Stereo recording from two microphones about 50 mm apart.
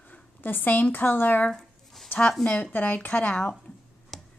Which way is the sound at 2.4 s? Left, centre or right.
Left.